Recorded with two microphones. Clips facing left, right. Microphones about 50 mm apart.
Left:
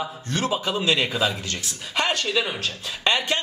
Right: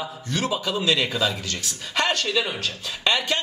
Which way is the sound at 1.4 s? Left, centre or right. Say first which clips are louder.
Even; left.